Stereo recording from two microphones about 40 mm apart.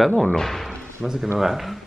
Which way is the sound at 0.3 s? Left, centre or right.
Centre.